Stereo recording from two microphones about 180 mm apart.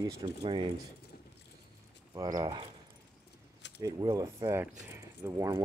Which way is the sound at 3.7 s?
20° right (ahead or behind).